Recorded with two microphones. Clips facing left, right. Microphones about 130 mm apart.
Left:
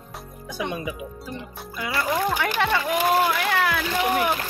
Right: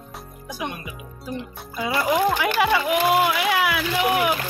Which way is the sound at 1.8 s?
20° right (ahead or behind).